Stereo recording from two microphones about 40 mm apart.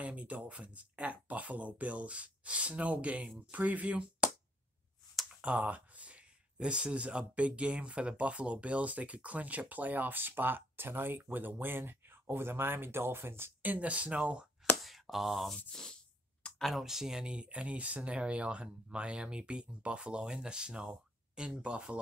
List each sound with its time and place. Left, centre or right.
0.0 s speech: right
5.4 s speech: right
13.6 s speech: right
14.8 s a sound: centre
15.5 s speech: centre
16.5 s speech: centre
16.8 s speech: centre
17.5 s speech: right